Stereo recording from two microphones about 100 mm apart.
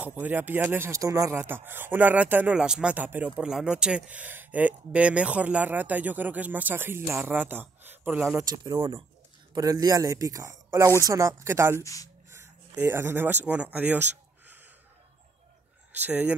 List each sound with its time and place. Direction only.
0.0 s speech: 20° right (ahead or behind); by 1.3 s 35° right (ahead or behind)
1.3 s speech: 20° right (ahead or behind)
8.5 s speech: 40° right (ahead or behind)
11.8 s speech: 35° left (ahead or behind)
12.3 s speech: 25° right (ahead or behind)
15.9 s speech: 15° right (ahead or behind)